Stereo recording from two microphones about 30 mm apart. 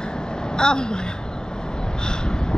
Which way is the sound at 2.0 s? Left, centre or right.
Left.